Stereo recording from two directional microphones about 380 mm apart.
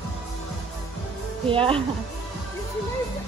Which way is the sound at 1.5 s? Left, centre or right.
Centre.